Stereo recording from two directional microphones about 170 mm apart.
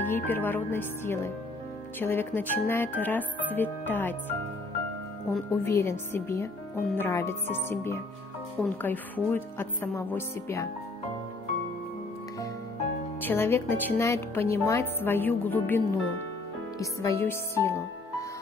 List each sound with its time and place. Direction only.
0.0 s a woman's voice: 10° left (ahead or behind)
5.5 s a woman's voice: 15° left (ahead or behind)
13.2 s a woman's voice: 10° left (ahead or behind)